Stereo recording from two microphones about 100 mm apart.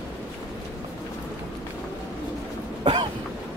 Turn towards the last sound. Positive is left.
turn(degrees=-60)  # may be behind; listen again after turning